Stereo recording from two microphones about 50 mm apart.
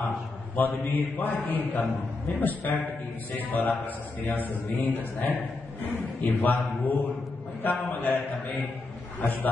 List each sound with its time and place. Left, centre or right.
0.6 s a man's voice: left